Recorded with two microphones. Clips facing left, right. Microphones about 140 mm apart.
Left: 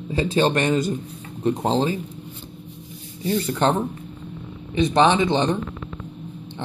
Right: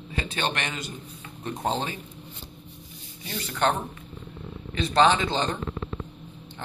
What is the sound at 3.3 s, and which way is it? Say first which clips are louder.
Speech: left 4 dB; 30° left (ahead or behind).